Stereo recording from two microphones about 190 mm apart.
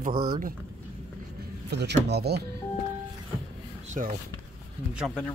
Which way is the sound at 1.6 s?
60° right (ahead or behind).